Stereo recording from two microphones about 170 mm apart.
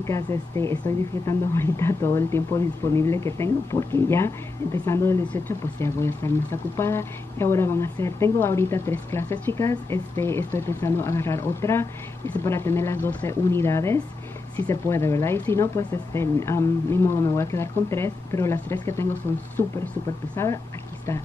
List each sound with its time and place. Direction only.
0.0 s speech: 15° left (ahead or behind)
20.4 s speech: 15° left (ahead or behind)